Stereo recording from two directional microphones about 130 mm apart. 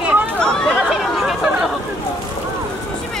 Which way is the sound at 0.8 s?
5° right (ahead or behind).